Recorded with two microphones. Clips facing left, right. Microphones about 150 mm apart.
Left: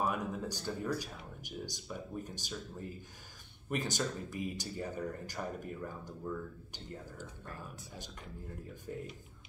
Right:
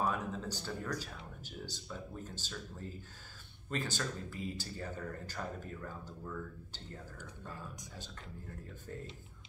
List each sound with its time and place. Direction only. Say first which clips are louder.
0.0 s speech: left 1 dB; 15° left (ahead or behind)